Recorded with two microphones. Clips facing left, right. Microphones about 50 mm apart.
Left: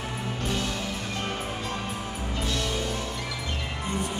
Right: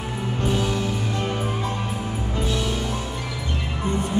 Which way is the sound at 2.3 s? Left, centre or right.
Centre.